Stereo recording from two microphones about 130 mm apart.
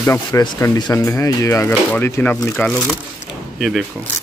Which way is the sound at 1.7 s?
10° left (ahead or behind).